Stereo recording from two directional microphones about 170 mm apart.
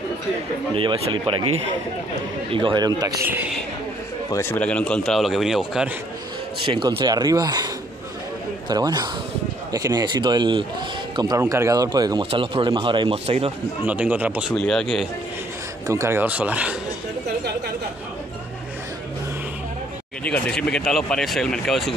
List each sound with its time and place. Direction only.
0.7 s speech: 30° right (ahead or behind)
4.3 s speech: 15° left (ahead or behind); by 5.9 s 5° right (ahead or behind)
6.6 s speech: 30° right (ahead or behind)
13.8 s speech: 10° right (ahead or behind)
14.5 s speech: 5° left (ahead or behind)
15.9 s speech: 15° right (ahead or behind)
20.2 s speech: 5° left (ahead or behind)